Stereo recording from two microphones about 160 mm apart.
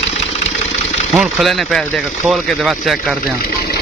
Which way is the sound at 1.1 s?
Centre (ahead or behind).